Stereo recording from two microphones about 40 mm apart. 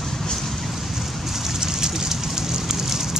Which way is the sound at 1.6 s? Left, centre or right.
Centre.